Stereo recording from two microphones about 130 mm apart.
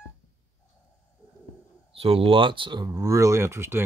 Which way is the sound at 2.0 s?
45° right (ahead or behind).